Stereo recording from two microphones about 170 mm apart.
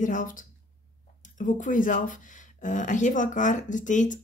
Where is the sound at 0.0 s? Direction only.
50° left (ahead or behind).